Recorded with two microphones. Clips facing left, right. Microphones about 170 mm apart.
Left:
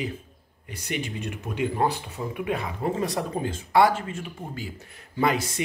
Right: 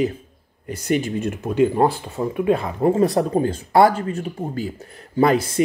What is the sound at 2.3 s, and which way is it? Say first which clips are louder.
Speech: right 10 dB; 30° right (ahead or behind).